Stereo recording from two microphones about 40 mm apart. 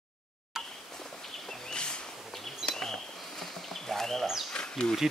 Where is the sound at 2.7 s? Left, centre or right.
Centre.